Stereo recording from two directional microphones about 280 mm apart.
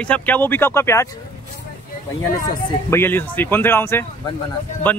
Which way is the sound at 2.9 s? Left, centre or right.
Centre.